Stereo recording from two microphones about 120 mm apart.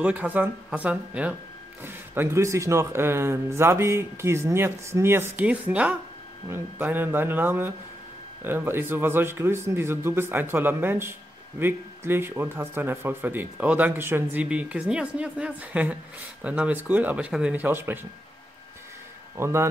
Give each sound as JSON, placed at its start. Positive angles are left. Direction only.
{"t": 0.0, "sound": "speech", "side_deg": -10}
{"t": 19.3, "sound": "speech", "side_deg": -20}